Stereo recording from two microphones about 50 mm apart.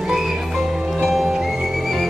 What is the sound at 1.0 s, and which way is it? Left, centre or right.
Music, centre.